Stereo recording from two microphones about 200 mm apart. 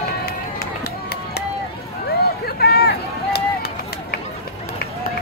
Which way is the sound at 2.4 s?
55° left (ahead or behind).